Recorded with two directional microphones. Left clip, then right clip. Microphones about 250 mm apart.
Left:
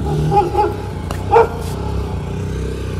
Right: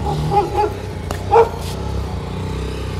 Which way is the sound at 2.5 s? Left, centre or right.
Right.